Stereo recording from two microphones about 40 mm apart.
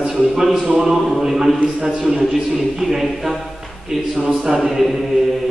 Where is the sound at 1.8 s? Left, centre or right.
Right.